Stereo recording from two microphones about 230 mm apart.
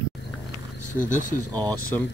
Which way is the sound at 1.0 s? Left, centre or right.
Left.